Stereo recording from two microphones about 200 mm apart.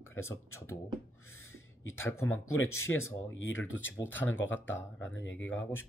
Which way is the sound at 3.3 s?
70° left (ahead or behind).